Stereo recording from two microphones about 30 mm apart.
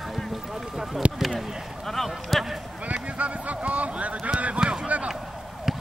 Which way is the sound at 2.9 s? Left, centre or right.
Right.